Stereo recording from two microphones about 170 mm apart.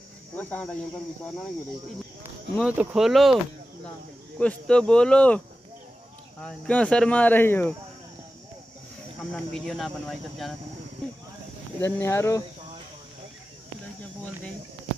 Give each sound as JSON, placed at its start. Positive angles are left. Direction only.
{"t": 0.4, "sound": "speech", "side_deg": 10}
{"t": 2.6, "sound": "speech", "side_deg": -5}
{"t": 4.4, "sound": "speech", "side_deg": 5}
{"t": 6.4, "sound": "speech", "side_deg": 5}
{"t": 9.3, "sound": "speech", "side_deg": 0}
{"t": 11.8, "sound": "speech", "side_deg": 15}